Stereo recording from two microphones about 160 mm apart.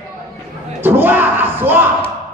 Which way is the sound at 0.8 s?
10° right (ahead or behind).